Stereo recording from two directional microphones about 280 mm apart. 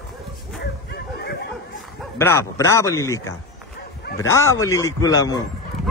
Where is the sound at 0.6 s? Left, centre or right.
Left.